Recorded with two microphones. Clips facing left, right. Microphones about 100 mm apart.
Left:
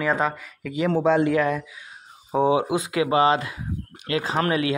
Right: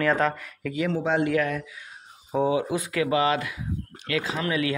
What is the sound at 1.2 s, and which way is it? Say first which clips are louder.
Speech: left 3 dB; 25° left (ahead or behind).